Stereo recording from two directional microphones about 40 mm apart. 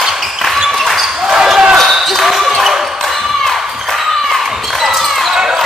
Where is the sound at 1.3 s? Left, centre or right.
Centre.